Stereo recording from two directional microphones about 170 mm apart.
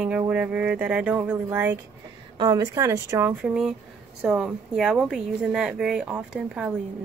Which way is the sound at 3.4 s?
5° right (ahead or behind).